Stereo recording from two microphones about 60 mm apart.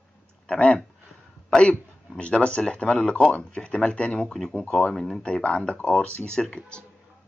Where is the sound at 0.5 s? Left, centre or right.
Centre.